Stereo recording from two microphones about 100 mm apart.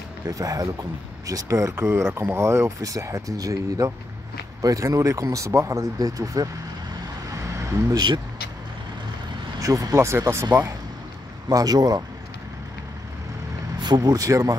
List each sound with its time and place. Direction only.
0.2 s speech: 35° right (ahead or behind)
7.5 s speech: 45° right (ahead or behind)
9.6 s speech: 35° right (ahead or behind)
11.4 s speech: 40° right (ahead or behind)
13.7 s speech: 45° right (ahead or behind)